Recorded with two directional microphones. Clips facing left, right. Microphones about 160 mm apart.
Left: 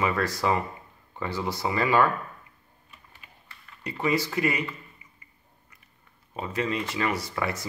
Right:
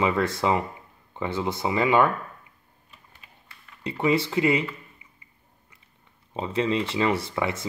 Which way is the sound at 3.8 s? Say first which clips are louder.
Right 3 dB; 25° right (ahead or behind).